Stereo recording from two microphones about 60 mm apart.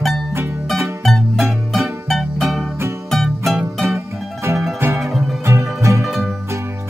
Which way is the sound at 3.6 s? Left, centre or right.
Right.